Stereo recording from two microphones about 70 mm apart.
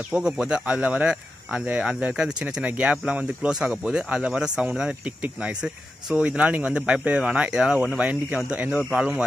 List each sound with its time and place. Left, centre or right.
0.1 s speech: centre